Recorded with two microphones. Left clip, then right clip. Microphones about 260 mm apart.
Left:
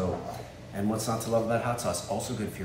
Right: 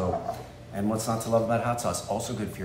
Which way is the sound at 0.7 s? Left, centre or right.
Centre.